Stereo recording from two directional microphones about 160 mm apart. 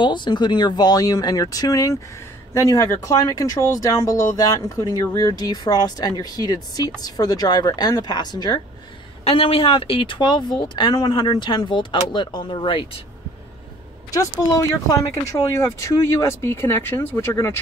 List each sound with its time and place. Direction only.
0.0 s speech: 30° left (ahead or behind)
14.1 s speech: 20° left (ahead or behind)